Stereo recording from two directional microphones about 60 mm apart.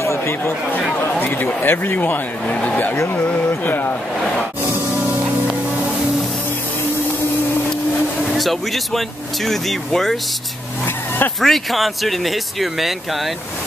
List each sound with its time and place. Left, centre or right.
0.0 s chatter: left
1.0 s a man's voice: left
2.4 s speech: left
8.4 s speech: centre
11.4 s speech: centre